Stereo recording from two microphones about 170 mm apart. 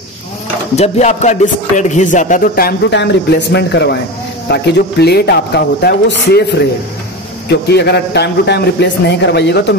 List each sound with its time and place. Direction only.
0.7 s speech: 40° left (ahead or behind); by 6.4 s 70° left (ahead or behind)
7.4 s a man's voice: 75° left (ahead or behind)